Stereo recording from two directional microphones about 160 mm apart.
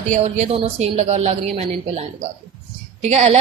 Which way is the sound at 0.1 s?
45° right (ahead or behind).